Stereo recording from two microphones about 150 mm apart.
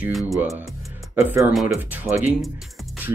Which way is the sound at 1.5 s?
Centre (ahead or behind).